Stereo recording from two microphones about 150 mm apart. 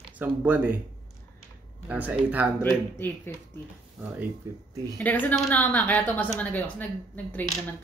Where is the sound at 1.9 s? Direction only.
10° right (ahead or behind).